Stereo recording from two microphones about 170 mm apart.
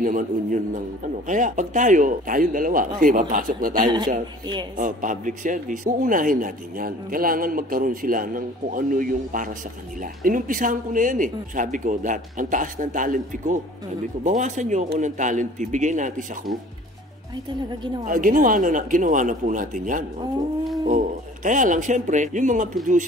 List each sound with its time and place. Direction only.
0.0 s a man's voice: 50° right (ahead or behind)
18.0 s a man's voice: 55° right (ahead or behind)